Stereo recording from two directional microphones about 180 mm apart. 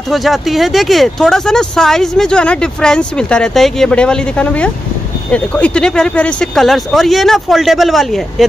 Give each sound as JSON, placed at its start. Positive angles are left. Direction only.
{"t": 0.1, "sound": "speech", "side_deg": 0}